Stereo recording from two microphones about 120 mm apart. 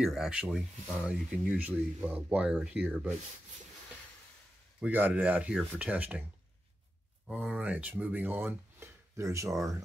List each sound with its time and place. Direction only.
0.0 s speech: 5° right (ahead or behind)
4.7 s speech: 15° right (ahead or behind)
7.2 s speech: 10° right (ahead or behind); by 9.8 s 30° right (ahead or behind)